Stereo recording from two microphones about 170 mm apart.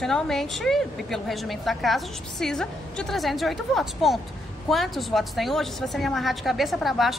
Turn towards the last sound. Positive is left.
turn(degrees=0)  # may be behind; listen again after turning